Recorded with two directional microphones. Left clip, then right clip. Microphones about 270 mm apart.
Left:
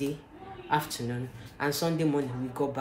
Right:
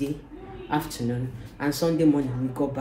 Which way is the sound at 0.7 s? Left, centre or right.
Centre.